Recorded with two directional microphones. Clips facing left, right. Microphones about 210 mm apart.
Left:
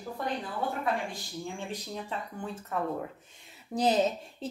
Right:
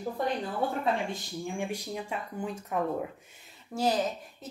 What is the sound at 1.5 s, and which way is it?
Speech, 10° right (ahead or behind).